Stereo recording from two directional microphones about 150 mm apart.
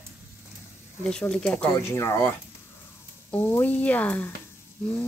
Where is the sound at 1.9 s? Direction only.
15° left (ahead or behind).